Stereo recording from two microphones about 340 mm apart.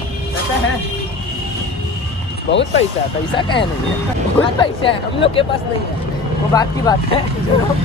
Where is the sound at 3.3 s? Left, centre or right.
Centre.